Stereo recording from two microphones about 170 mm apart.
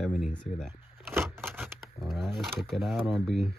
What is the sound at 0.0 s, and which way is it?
Speech, centre (ahead or behind).